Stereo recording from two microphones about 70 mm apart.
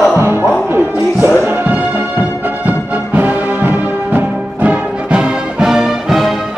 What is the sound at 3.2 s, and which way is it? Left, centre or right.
Music, right.